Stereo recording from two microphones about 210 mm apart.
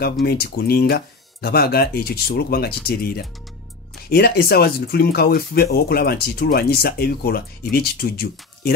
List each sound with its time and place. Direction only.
0.0 s speech: 50° left (ahead or behind)